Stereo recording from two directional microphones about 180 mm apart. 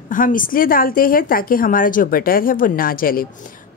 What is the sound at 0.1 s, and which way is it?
A woman's voice, 50° left (ahead or behind).